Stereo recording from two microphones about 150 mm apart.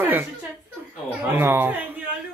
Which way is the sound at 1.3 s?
15° right (ahead or behind).